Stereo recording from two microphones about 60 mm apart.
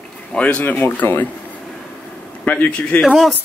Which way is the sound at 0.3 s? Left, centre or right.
Left.